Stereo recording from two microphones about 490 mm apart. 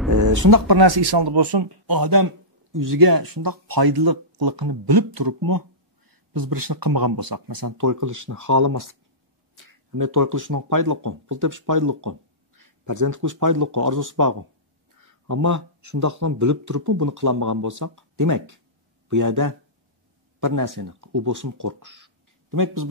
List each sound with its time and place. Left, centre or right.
0.1 s speech: right